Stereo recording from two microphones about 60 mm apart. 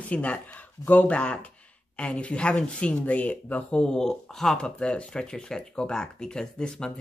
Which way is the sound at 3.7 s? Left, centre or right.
Centre.